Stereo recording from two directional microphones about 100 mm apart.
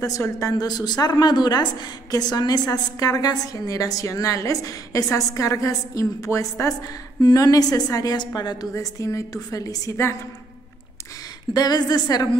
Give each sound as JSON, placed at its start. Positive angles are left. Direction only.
{"t": 0.4, "sound": "a woman's voice", "side_deg": 40}
{"t": 7.2, "sound": "a woman's voice", "side_deg": 40}
{"t": 11.5, "sound": "a woman's voice", "side_deg": 45}